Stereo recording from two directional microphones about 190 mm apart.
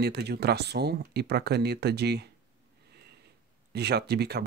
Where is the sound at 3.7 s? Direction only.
60° right (ahead or behind).